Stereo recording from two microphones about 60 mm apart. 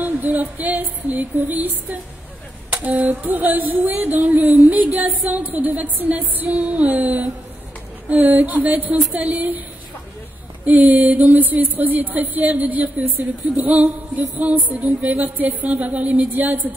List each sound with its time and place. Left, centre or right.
0.0 s speech: right
2.7 s a sound: right
4.6 s speech: right
10.6 s speech: right